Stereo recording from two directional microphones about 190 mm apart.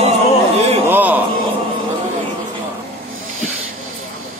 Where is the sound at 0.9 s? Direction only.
10° right (ahead or behind).